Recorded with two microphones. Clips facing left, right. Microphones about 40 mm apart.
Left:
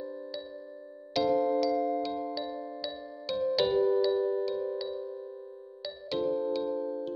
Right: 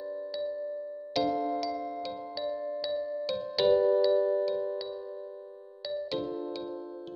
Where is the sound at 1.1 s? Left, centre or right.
Centre.